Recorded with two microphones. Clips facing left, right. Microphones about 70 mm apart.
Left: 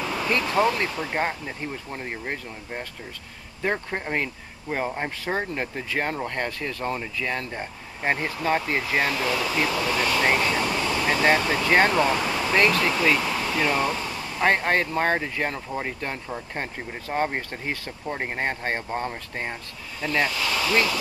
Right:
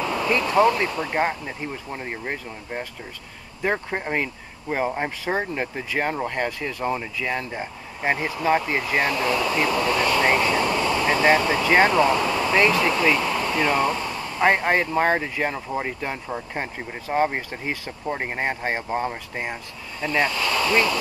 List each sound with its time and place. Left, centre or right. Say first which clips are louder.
0.0 s a sound: right 3 dB; centre
0.3 s speech: right 4 dB; centre
0.9 s speech: right 3 dB; centre
9.2 s speech: right 3 dB; centre
10.1 s vehicle: right 1 dB; centre
10.6 s vehicle: right 3 dB; right
11.1 s speech: right 2 dB; centre
12.2 s a sound: right 3 dB; centre
12.4 s speech: right 1 dB; centre
12.9 s speech: right 2 dB; centre
14.2 s speech: right 2 dB; centre
20.3 s speech: right 3 dB; right